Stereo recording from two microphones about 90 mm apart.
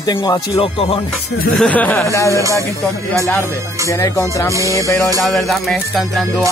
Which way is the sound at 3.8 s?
35° left (ahead or behind).